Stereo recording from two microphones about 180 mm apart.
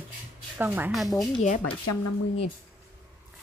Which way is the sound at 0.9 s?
Centre (ahead or behind).